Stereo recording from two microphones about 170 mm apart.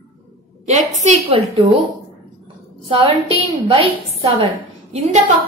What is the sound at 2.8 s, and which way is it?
A woman's voice, 30° right (ahead or behind).